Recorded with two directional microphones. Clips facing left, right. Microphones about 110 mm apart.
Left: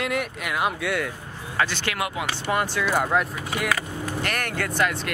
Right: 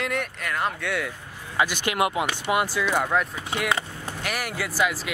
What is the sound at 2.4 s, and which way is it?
Speech, 10° right (ahead or behind).